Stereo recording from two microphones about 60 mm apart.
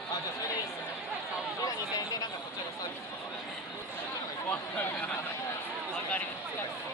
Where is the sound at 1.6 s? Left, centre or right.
Left.